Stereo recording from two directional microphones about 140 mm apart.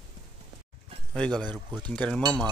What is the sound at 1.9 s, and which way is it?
Cutlery, 5° left (ahead or behind).